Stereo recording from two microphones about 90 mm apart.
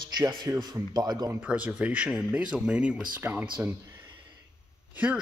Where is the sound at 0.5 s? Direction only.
30° right (ahead or behind).